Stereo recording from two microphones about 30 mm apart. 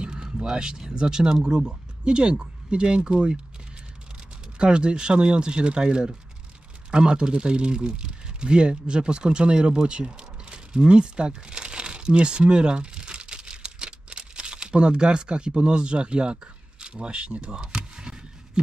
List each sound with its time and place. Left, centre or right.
0.0 s speech: right
4.6 s a man's voice: right
16.9 s a sound: right